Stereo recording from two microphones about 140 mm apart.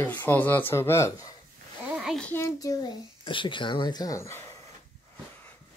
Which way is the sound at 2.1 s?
10° left (ahead or behind).